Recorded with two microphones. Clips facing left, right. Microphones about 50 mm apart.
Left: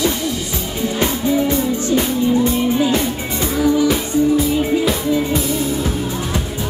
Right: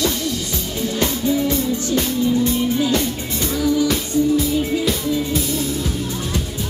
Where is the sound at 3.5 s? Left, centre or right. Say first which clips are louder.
Left 3 dB; left.